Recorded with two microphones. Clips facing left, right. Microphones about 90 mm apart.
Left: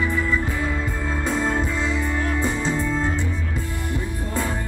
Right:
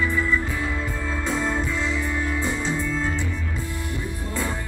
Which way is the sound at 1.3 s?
10° left (ahead or behind).